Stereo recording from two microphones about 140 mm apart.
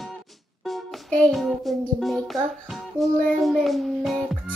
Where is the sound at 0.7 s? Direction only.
Centre (ahead or behind).